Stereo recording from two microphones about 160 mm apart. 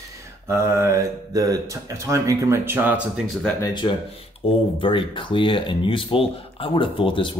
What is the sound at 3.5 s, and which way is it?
Speech, 20° left (ahead or behind).